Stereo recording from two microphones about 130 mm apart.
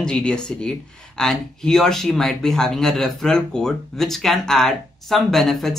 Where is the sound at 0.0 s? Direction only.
5° left (ahead or behind).